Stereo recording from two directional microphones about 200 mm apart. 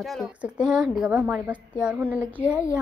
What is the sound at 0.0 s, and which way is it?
A woman's voice, centre (ahead or behind).